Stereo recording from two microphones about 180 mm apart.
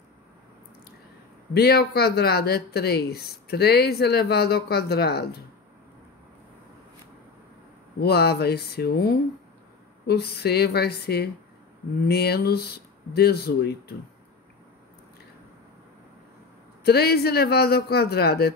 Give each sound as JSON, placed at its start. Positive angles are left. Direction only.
{"t": 1.5, "sound": "speech", "side_deg": 60}
{"t": 8.0, "sound": "speech", "side_deg": 65}
{"t": 16.8, "sound": "speech", "side_deg": 60}